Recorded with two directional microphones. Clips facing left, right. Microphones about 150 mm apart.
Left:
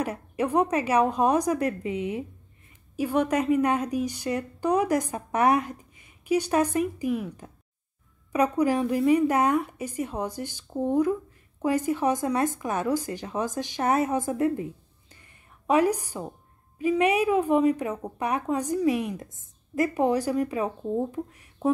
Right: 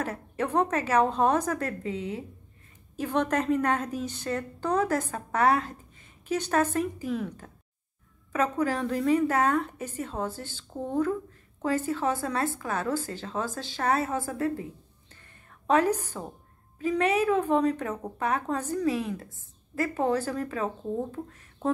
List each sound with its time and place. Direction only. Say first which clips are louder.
0.0 s a woman's voice: left 3 dB; 15° left (ahead or behind)